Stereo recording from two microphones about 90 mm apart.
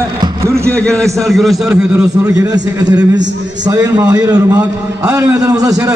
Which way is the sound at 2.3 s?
45° right (ahead or behind).